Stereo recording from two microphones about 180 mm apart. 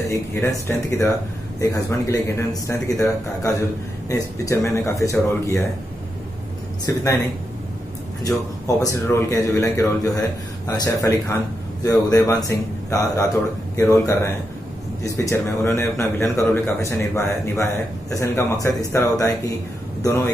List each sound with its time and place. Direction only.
0.1 s a man's voice: 15° left (ahead or behind)
6.9 s speech: 20° left (ahead or behind)
8.6 s a man's voice: 20° left (ahead or behind)